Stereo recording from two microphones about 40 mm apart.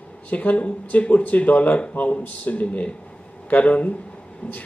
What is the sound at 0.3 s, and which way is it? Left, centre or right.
Speech, left.